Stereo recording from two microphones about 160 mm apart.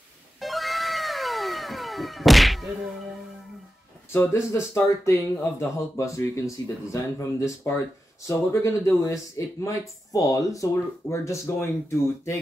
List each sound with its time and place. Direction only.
0.4 s cat: centre (ahead or behind)
4.1 s speech: 15° left (ahead or behind)